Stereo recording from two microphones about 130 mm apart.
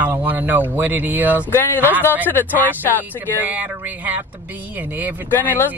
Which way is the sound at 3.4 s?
15° right (ahead or behind).